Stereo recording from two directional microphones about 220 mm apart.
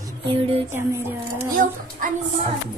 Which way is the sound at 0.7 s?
10° right (ahead or behind).